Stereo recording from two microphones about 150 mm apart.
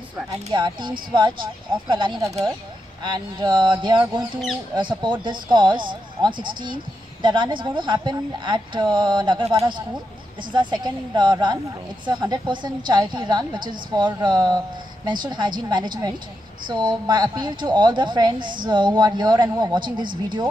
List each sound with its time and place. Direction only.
0.3 s speech: 25° right (ahead or behind)
9.4 s a woman's voice: 20° right (ahead or behind)
10.5 s a woman's voice: 30° right (ahead or behind)